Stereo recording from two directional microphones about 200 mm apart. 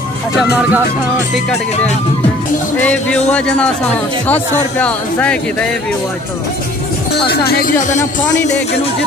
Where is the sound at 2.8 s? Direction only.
5° left (ahead or behind).